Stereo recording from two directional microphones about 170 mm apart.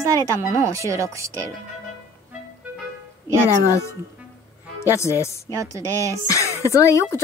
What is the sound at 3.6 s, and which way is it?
Speech, 15° left (ahead or behind).